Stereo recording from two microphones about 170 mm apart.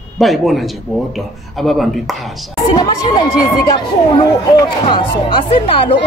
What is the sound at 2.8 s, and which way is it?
Speech, 25° left (ahead or behind).